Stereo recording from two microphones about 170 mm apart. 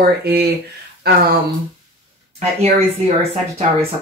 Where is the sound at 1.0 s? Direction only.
65° right (ahead or behind).